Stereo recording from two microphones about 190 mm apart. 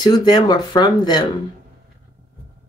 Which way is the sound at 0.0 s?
20° left (ahead or behind).